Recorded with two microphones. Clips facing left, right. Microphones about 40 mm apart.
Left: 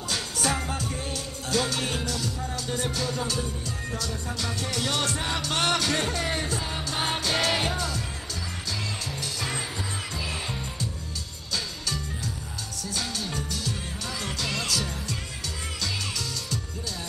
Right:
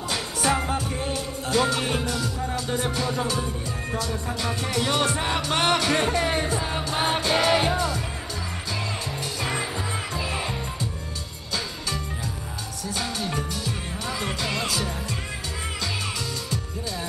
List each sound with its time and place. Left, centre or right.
0.1 s music: right
9.4 s music: right
12.9 s music: right